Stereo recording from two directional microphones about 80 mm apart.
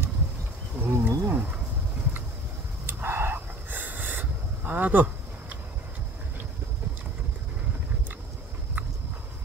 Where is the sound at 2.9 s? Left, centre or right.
Right.